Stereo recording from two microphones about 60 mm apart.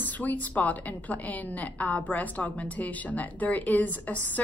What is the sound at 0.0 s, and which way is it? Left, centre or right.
A woman's voice, left.